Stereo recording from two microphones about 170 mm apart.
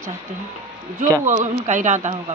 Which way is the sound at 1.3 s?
45° right (ahead or behind).